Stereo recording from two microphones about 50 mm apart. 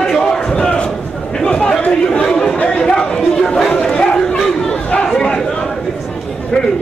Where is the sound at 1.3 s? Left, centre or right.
Centre.